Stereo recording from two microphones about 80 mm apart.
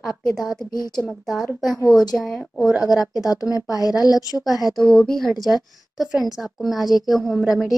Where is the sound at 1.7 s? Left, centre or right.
Left.